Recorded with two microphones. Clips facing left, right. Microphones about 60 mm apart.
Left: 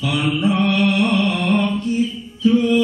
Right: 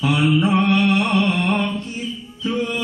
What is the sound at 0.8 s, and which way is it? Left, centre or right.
Music, right.